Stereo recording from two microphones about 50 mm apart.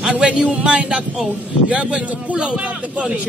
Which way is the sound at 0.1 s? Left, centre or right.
Right.